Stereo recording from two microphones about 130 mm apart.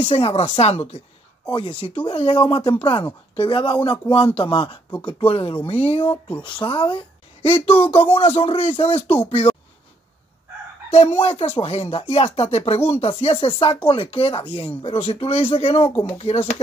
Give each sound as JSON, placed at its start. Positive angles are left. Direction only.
{"t": 0.0, "sound": "speech", "side_deg": 50}
{"t": 2.0, "sound": "speech", "side_deg": 40}
{"t": 10.9, "sound": "speech", "side_deg": 50}